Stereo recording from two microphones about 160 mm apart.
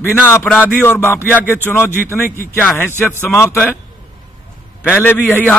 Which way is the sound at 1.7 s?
Centre (ahead or behind).